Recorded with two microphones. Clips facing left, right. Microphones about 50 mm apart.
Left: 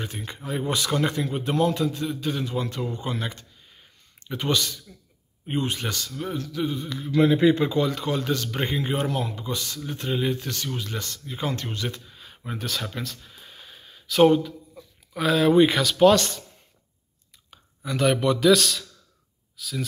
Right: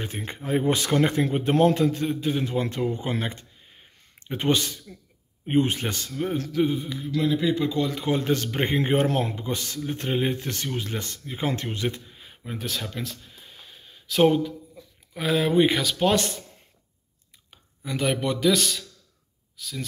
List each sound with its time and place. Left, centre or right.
0.0 s speech: right
2.1 s speech: right
6.7 s speech: centre
7.2 s speech: left
8.1 s speech: right; by 12.4 s centre
12.4 s a sound: centre
15.1 s speech: centre
16.1 s speech: right
17.5 s a man's voice: centre